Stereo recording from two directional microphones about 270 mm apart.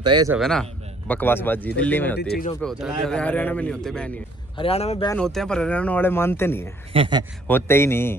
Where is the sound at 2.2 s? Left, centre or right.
Left.